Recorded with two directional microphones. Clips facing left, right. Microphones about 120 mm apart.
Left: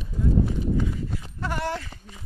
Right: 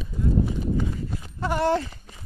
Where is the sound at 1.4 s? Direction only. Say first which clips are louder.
Right 7 dB; 25° right (ahead or behind).